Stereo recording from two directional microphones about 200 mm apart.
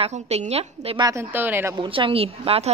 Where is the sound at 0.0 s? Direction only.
35° right (ahead or behind); by 1.8 s 10° right (ahead or behind).